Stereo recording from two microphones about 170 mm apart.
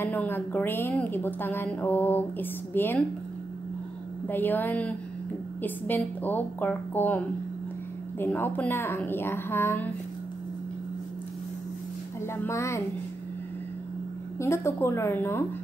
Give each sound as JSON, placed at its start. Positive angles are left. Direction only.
{"t": 0.0, "sound": "a woman's voice", "side_deg": 10}
{"t": 4.3, "sound": "a woman's voice", "side_deg": 10}
{"t": 12.4, "sound": "a woman's voice", "side_deg": 15}
{"t": 14.4, "sound": "a woman's voice", "side_deg": 15}